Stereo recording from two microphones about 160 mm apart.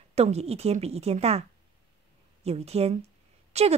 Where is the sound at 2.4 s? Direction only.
40° right (ahead or behind).